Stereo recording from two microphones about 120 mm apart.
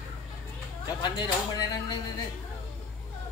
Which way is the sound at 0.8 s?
35° left (ahead or behind).